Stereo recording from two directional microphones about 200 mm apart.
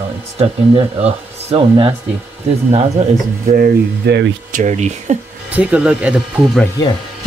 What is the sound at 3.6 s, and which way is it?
Speech, 55° right (ahead or behind).